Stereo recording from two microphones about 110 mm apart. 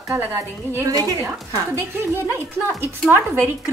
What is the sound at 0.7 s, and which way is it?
A woman's voice, 30° right (ahead or behind).